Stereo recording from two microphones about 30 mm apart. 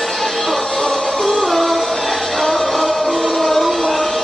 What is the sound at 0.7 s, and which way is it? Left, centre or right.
Music, left.